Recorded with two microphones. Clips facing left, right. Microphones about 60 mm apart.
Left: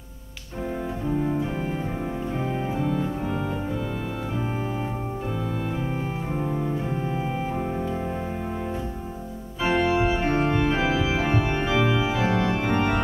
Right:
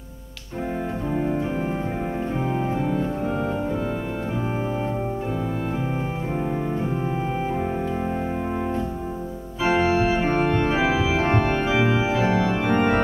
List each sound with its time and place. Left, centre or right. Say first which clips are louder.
9.6 s organ: right 2 dB; centre